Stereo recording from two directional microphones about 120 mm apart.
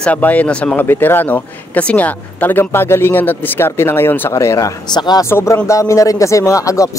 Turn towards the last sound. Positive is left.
turn(degrees=25)  # may be behind; listen again after turning